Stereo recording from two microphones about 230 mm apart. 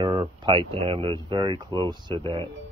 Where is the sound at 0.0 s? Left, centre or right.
Centre.